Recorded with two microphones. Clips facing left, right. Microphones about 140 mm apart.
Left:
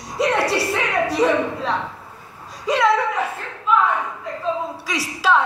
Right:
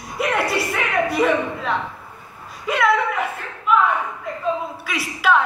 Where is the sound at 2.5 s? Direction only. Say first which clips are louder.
Left 1 dB; 35° left (ahead or behind).